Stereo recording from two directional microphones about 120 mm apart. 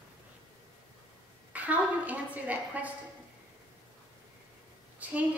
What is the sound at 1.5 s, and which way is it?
A woman's voice, 15° right (ahead or behind).